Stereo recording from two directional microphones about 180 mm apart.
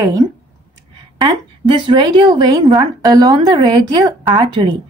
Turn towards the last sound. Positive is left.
turn(degrees=-25)  # may be behind; listen again after turning